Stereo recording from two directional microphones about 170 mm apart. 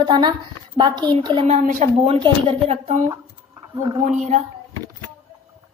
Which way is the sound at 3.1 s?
20° right (ahead or behind).